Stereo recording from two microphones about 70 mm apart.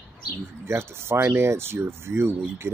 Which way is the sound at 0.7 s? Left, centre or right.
Right.